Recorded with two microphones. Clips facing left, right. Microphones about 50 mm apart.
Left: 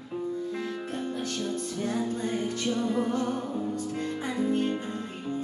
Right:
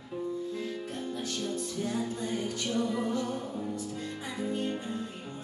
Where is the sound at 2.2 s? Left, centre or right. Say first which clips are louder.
Left 4 dB; left.